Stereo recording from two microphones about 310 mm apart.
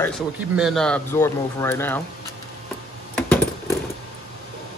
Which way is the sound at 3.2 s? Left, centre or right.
Centre.